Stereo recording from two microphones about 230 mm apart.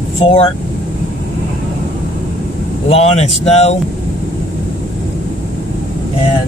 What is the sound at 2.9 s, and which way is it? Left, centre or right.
Speech, left.